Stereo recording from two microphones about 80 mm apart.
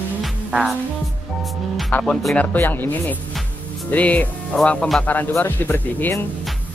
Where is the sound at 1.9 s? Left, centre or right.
Left.